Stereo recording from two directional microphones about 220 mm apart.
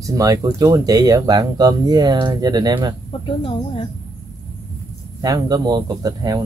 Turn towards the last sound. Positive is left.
turn(degrees=-15)  # may be behind; listen again after turning